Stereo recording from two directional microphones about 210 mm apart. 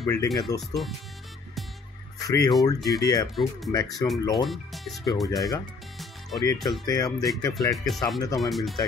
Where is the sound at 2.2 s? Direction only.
15° left (ahead or behind).